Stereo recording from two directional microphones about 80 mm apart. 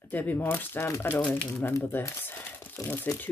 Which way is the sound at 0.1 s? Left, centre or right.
Left.